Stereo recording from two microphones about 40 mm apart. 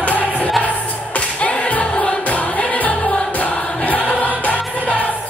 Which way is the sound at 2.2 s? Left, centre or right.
Left.